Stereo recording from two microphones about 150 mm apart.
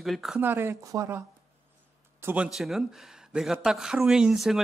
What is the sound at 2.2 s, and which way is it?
Speech, 10° right (ahead or behind).